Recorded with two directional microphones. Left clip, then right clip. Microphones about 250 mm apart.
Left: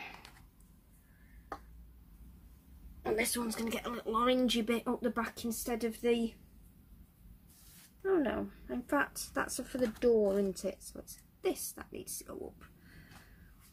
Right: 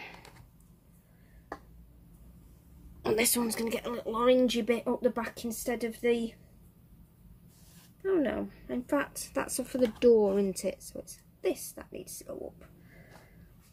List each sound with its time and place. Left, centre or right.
0.0 s a sound: centre
3.0 s a woman's voice: right
3.5 s speech: centre
8.0 s speech: centre